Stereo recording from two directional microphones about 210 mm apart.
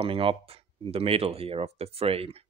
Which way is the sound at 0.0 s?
25° right (ahead or behind).